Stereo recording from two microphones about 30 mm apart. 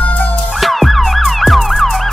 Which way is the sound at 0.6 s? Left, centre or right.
Centre.